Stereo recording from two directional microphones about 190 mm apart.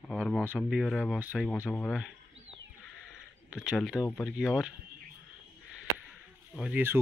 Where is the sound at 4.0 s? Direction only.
10° left (ahead or behind).